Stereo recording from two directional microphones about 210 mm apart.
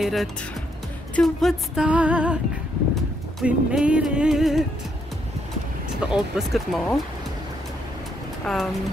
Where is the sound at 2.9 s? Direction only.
5° right (ahead or behind).